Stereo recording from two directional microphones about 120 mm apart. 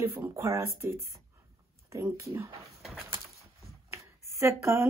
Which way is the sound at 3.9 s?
25° right (ahead or behind).